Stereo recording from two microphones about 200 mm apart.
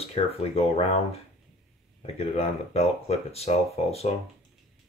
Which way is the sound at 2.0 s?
30° left (ahead or behind).